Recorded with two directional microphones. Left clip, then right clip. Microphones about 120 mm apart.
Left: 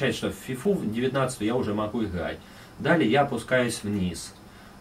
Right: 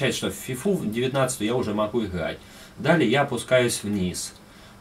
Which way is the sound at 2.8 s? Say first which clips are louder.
Right 1 dB; 40° right (ahead or behind).